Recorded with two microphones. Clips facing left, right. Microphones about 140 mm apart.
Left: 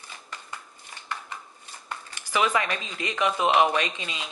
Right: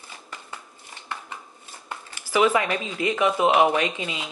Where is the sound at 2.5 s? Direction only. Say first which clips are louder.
Right 4 dB; 25° right (ahead or behind).